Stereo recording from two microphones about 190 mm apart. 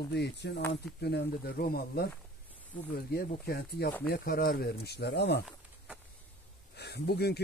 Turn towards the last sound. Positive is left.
turn(degrees=60)  # may be behind; listen again after turning